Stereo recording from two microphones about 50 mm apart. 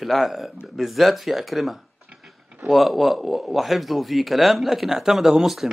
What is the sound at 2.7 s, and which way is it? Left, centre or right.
A man's voice, centre.